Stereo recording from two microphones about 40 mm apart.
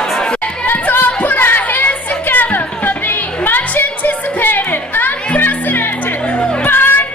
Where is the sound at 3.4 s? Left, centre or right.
Left.